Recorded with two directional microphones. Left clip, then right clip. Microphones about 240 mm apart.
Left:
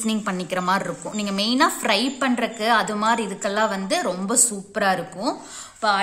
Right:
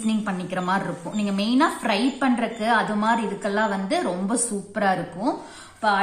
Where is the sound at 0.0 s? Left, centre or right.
Left.